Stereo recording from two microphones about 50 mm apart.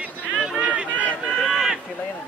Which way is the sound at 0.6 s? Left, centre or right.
Right.